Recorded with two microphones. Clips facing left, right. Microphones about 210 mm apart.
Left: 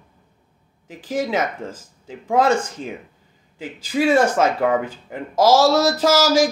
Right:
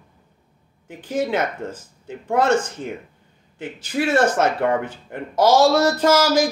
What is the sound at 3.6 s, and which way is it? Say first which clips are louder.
Speech: left 3 dB; 10° left (ahead or behind).